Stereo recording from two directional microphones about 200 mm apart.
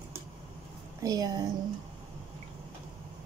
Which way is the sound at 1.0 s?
20° right (ahead or behind).